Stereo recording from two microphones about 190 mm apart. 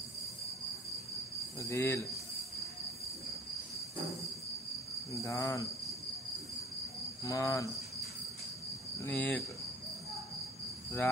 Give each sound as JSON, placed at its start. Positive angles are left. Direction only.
{"t": 1.6, "sound": "cricket", "side_deg": 15}
{"t": 5.2, "sound": "cricket", "side_deg": 15}
{"t": 7.2, "sound": "cricket", "side_deg": 15}
{"t": 9.0, "sound": "cricket", "side_deg": 10}